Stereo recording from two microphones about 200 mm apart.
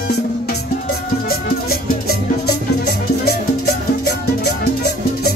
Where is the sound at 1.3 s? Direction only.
50° left (ahead or behind).